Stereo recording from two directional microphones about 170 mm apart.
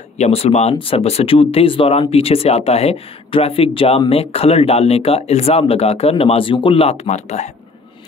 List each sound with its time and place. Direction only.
0.2 s speech: 40° left (ahead or behind)